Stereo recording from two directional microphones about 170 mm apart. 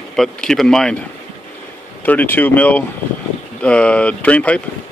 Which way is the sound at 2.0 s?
10° left (ahead or behind).